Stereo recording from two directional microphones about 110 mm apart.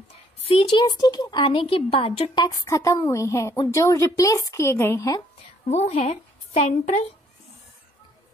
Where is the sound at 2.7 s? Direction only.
30° left (ahead or behind).